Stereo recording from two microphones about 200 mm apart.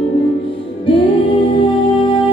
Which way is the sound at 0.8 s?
25° left (ahead or behind).